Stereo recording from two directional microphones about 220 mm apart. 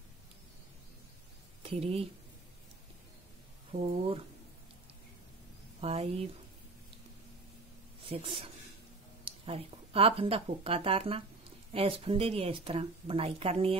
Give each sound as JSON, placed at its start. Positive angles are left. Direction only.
{"t": 1.6, "sound": "speech", "side_deg": -25}
{"t": 3.7, "sound": "speech", "side_deg": -30}
{"t": 5.8, "sound": "speech", "side_deg": -25}
{"t": 8.0, "sound": "a woman's voice", "side_deg": -25}